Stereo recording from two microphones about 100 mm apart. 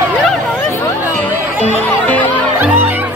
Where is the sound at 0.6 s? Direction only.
25° left (ahead or behind).